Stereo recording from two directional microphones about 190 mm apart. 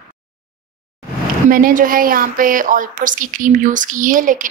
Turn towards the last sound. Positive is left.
turn(degrees=-45)  # may be behind; listen again after turning